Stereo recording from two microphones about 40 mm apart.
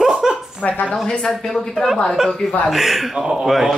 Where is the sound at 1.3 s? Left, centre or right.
Centre.